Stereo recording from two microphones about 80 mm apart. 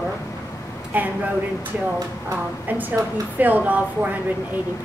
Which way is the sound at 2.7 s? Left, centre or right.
Right.